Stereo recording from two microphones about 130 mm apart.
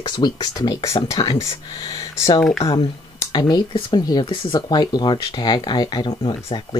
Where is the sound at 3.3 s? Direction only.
35° left (ahead or behind).